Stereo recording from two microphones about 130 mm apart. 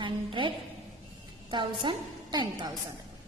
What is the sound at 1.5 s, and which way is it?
A woman's voice, 35° right (ahead or behind).